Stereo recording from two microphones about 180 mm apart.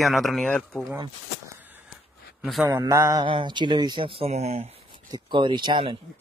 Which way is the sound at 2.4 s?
Centre (ahead or behind).